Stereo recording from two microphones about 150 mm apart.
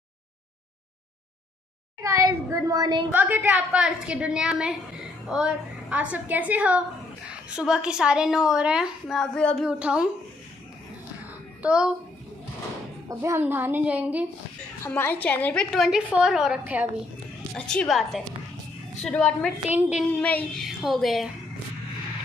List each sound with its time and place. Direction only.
2.0 s a woman's voice: 20° right (ahead or behind)
3.1 s a woman's voice: 10° right (ahead or behind); by 9.7 s 5° left (ahead or behind)
9.7 s a woman's voice: 5° right (ahead or behind)
11.6 s a child's voice: 5° right (ahead or behind)
13.1 s a woman's voice: 15° right (ahead or behind)
14.9 s a woman's voice: 10° left (ahead or behind); by 16.9 s 10° right (ahead or behind)
17.6 s a woman's voice: 5° left (ahead or behind)
19.7 s a woman's voice: 10° right (ahead or behind)
20.1 s child singing: 10° left (ahead or behind)
20.6 s a woman's voice: centre (ahead or behind)